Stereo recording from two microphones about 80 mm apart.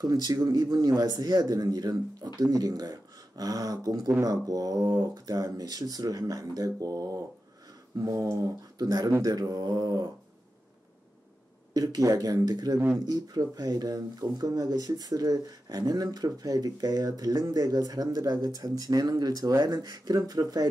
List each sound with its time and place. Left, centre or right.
0.0 s speech: right
9.2 s mantra: right
11.7 s speech: right